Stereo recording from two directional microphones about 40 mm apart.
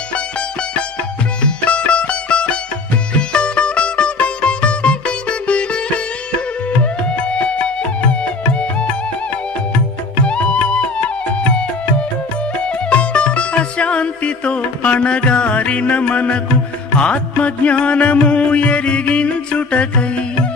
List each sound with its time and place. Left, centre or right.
1.4 s sitar: left
6.8 s music: left
10.2 s music: left
12.6 s music: left